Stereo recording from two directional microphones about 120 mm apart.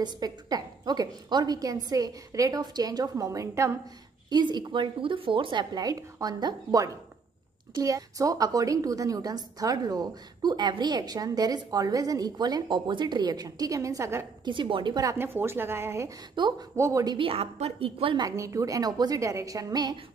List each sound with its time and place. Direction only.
0.0 s a woman's voice: 35° right (ahead or behind)
4.3 s a woman's voice: 35° right (ahead or behind)
14.4 s a woman's voice: 40° right (ahead or behind)
15.1 s a woman's voice: 20° right (ahead or behind)
16.3 s a woman's voice: 40° right (ahead or behind)
16.7 s a woman's voice: 25° right (ahead or behind)
17.3 s a woman's voice: 55° right (ahead or behind)
18.2 s a woman's voice: 25° right (ahead or behind)